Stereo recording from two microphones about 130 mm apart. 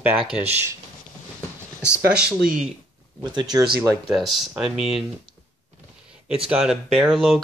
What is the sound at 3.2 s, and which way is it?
Speech, 35° right (ahead or behind).